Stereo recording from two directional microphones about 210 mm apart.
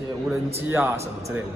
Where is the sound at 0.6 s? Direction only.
10° right (ahead or behind).